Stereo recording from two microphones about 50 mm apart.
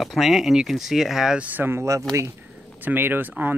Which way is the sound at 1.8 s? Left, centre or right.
Right.